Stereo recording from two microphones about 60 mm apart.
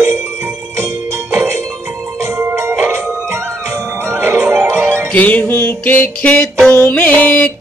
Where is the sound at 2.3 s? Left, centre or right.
Right.